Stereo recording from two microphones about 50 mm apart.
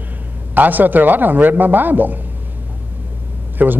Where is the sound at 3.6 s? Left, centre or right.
Right.